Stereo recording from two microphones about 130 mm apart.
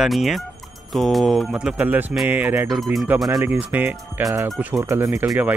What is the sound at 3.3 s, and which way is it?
Speech, 25° right (ahead or behind).